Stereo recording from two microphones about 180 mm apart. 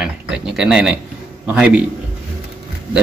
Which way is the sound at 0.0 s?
5° right (ahead or behind).